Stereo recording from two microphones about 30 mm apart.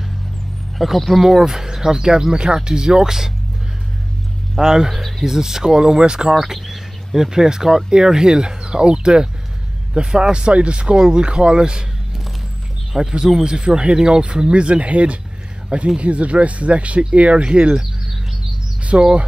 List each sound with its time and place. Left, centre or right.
0.7 s speech: centre
1.2 s speech: centre
4.6 s speech: centre
6.3 s speech: centre; by 11.8 s right
12.9 s speech: right
14.6 s speech: right
18.9 s speech: right